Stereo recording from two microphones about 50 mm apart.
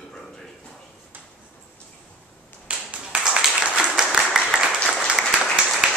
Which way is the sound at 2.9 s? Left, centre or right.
Right.